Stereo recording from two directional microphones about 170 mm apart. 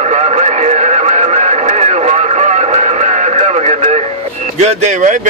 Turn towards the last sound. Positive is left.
turn(degrees=-45)  # may be behind; listen again after turning